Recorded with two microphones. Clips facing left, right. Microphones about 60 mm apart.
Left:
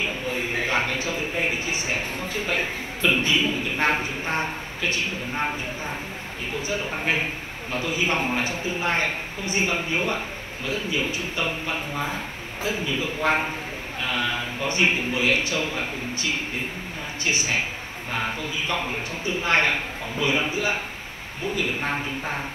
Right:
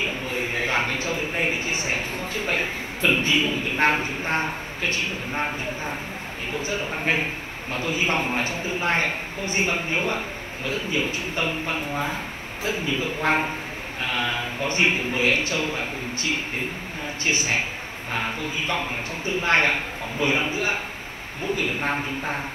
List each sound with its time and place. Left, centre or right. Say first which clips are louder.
0.0 s a sound: even; right
3.5 s a man's voice: right 2 dB; right
6.7 s a man's voice: even; right
18.9 s a man's voice: even; right